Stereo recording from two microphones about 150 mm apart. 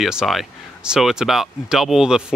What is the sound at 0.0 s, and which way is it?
Speech, 5° right (ahead or behind).